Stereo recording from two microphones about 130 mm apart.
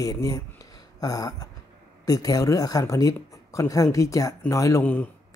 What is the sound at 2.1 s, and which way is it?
Speech, 30° left (ahead or behind).